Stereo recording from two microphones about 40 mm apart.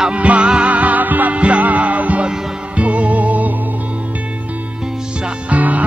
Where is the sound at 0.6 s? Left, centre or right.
Right.